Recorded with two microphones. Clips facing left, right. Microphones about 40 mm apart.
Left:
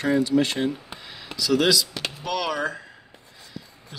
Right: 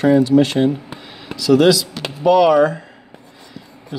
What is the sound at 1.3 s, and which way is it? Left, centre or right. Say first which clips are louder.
Speech: right 8 dB; centre.